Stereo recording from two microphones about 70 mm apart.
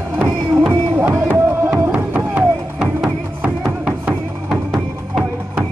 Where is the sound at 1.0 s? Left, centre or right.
Right.